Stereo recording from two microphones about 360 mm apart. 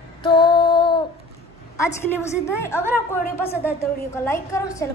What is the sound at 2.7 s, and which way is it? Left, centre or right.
A woman's voice, centre.